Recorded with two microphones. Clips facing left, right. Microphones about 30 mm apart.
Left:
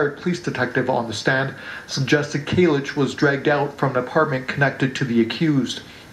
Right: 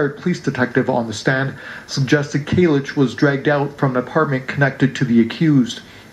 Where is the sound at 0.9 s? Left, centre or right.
Left.